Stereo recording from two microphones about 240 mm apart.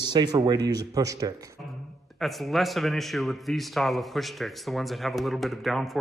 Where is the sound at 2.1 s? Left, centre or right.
Centre.